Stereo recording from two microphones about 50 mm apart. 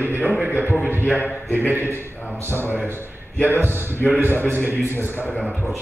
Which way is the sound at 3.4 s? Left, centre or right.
Right.